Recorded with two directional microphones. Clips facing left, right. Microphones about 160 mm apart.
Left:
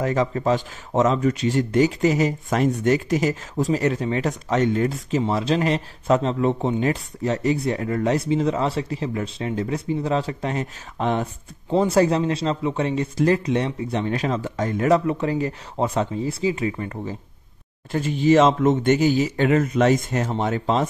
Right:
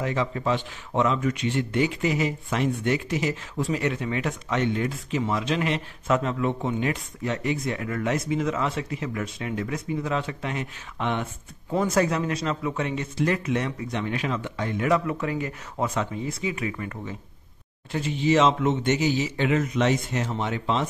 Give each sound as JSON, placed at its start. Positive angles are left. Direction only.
{"t": 0.0, "sound": "speech", "side_deg": 40}
{"t": 15.0, "sound": "speech", "side_deg": 30}
{"t": 17.9, "sound": "a man's voice", "side_deg": 45}